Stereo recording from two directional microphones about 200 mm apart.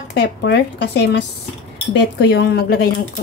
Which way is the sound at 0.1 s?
60° left (ahead or behind).